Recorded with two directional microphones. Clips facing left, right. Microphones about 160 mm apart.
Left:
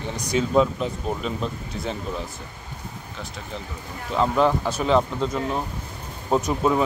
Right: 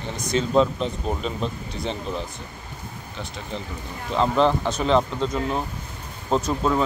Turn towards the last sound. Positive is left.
turn(degrees=10)  # may be behind; listen again after turning